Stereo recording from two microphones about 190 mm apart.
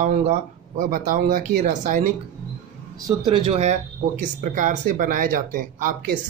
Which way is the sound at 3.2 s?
25° right (ahead or behind).